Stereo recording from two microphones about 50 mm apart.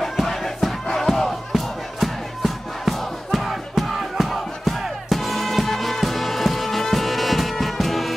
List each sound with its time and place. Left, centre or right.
0.0 s crowd: centre
0.8 s music: centre